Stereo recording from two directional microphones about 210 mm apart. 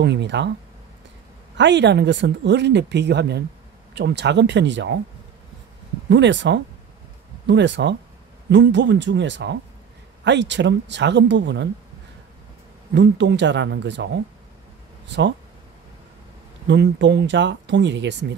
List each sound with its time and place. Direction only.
0.0 s speech: 55° right (ahead or behind)
1.6 s speech: 55° right (ahead or behind)
6.0 s speech: 55° right (ahead or behind)
12.9 s speech: 55° right (ahead or behind)
16.6 s speech: 55° right (ahead or behind)